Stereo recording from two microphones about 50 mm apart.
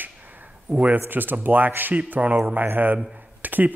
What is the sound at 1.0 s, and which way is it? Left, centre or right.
A man's voice, right.